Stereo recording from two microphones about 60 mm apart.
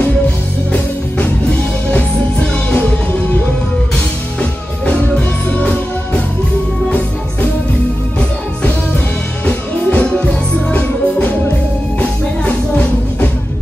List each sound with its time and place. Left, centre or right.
0.7 s music: left
3.9 s music: centre
9.5 s music: left